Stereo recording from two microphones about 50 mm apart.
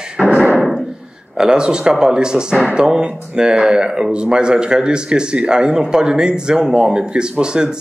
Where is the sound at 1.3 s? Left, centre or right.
Centre.